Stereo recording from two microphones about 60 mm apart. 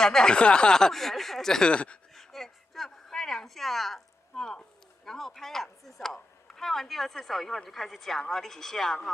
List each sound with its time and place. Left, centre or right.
0.0 s speech: centre
2.1 s a sound: centre
5.0 s speech: centre